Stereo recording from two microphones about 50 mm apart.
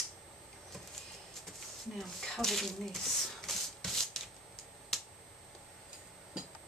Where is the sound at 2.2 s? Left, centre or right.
Centre.